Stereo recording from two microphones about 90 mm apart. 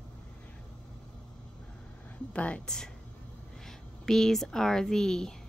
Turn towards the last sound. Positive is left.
turn(degrees=5)  # may be behind; listen again after turning